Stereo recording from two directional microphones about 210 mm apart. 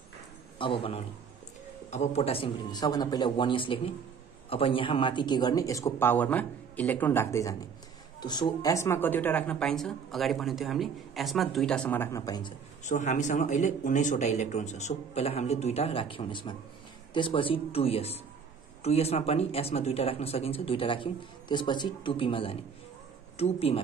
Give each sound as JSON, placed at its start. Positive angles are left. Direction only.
{"t": 0.6, "sound": "speech", "side_deg": 25}
{"t": 12.8, "sound": "speech", "side_deg": 35}